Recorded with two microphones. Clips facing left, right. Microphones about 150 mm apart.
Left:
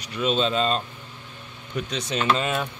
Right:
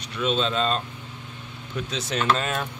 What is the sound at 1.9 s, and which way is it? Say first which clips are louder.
Speech: even; 10° left (ahead or behind).